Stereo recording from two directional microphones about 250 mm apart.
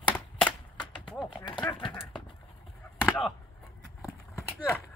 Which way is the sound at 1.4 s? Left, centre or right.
Centre.